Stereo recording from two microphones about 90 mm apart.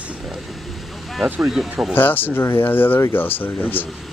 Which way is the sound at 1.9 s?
20° left (ahead or behind).